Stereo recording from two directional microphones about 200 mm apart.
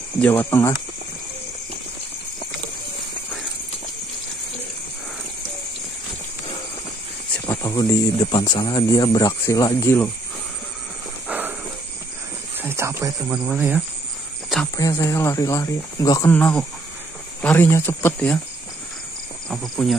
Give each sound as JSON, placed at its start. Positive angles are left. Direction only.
{"t": 0.2, "sound": "speech", "side_deg": 10}
{"t": 7.4, "sound": "speech", "side_deg": 10}
{"t": 11.2, "sound": "a sound", "side_deg": -10}
{"t": 12.6, "sound": "a sound", "side_deg": -15}
{"t": 13.3, "sound": "speech", "side_deg": -5}
{"t": 14.8, "sound": "speech", "side_deg": 15}
{"t": 19.5, "sound": "speech", "side_deg": 0}